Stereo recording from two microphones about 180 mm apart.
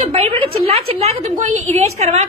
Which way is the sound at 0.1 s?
35° right (ahead or behind).